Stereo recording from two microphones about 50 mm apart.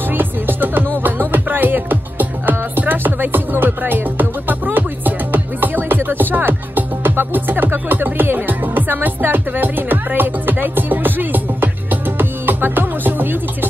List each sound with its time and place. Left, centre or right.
0.1 s music: right